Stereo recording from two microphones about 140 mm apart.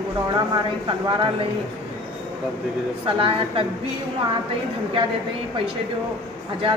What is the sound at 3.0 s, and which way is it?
Speech, 40° right (ahead or behind).